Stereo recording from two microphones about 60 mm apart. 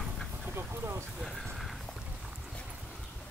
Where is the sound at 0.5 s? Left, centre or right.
Right.